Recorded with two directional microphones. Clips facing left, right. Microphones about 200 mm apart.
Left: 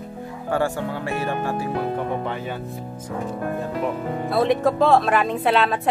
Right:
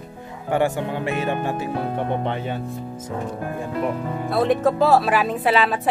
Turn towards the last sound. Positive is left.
turn(degrees=0)  # may be behind; listen again after turning